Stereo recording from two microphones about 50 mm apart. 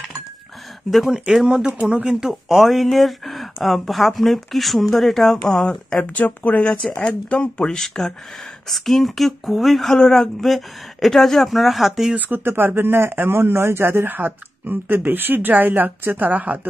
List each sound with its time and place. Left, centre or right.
0.8 s speech: centre
6.0 s speech: left
6.6 s speech: centre
12.2 s speech: right